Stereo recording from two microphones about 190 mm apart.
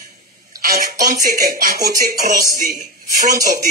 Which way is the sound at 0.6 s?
50° right (ahead or behind).